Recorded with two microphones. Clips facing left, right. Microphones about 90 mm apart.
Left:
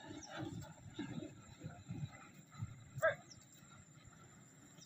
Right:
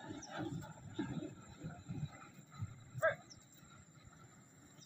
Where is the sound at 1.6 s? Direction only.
20° right (ahead or behind).